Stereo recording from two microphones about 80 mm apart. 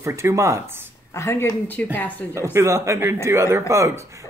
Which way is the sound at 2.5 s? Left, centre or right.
Right.